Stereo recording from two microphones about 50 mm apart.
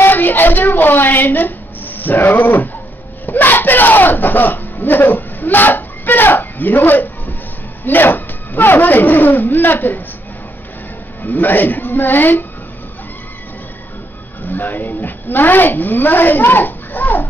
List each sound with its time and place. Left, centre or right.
0.0 s a sound: left
7.8 s speech: left
11.2 s a woman's voice: left
14.4 s a woman's voice: left